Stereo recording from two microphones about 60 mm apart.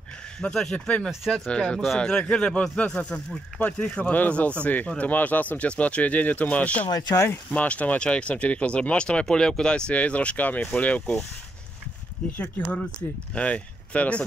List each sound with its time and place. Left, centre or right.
0.4 s speech: centre
1.2 s speech: centre
1.5 s speech: centre